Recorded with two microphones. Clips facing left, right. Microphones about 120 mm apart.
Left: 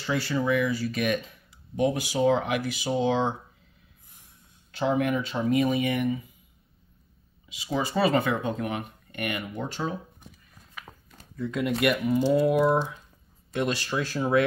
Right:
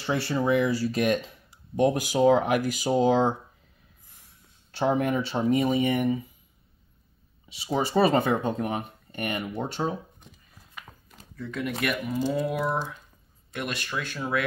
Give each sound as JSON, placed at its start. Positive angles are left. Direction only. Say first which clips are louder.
{"t": 0.0, "sound": "speech", "louder": "right 1 dB", "side_deg": -30}
{"t": 1.9, "sound": "speech", "louder": "right 3 dB", "side_deg": -45}
{"t": 4.7, "sound": "speech", "louder": "right 1 dB", "side_deg": -35}
{"t": 7.6, "sound": "speech", "louder": "right 2 dB", "side_deg": -30}
{"t": 10.7, "sound": "a sound", "louder": "left 1 dB", "side_deg": 0}
{"t": 11.8, "sound": "speech", "louder": "left 5 dB", "side_deg": 15}